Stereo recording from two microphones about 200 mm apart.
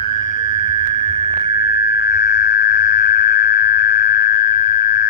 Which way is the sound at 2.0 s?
55° left (ahead or behind).